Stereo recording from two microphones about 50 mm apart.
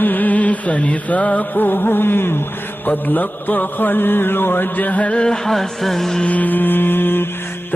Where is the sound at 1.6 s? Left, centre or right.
Left.